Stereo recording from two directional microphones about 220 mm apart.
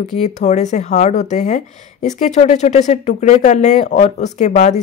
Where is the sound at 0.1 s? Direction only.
30° left (ahead or behind).